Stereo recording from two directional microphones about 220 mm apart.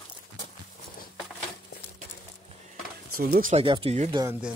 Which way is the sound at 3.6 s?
25° right (ahead or behind).